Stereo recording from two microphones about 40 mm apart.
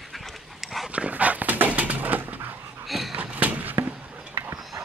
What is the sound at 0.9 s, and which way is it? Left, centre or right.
Dog, right.